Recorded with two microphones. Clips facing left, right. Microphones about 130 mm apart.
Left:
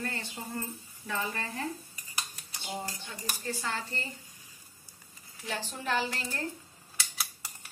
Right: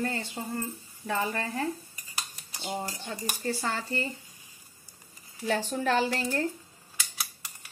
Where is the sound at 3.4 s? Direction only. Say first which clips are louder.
Right 4 dB; 40° right (ahead or behind).